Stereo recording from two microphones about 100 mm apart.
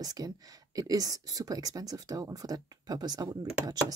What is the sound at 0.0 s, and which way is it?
Speech, 40° right (ahead or behind).